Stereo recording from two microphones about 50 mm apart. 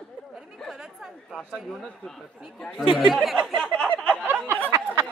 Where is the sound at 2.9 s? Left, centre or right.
Centre.